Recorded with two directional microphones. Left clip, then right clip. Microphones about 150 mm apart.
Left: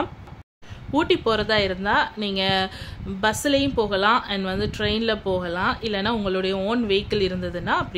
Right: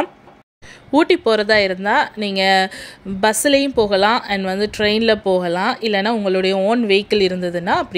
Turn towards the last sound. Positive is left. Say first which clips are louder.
# right 6 dB
turn(degrees=-30)  # may be behind; listen again after turning